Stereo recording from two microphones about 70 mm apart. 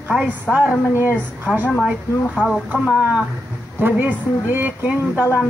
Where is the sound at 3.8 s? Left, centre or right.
Right.